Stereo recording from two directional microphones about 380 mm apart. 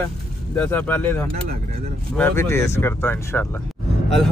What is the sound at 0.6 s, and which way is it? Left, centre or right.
Speech, centre.